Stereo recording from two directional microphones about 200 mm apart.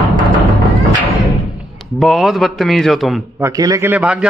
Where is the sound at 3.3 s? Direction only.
15° right (ahead or behind).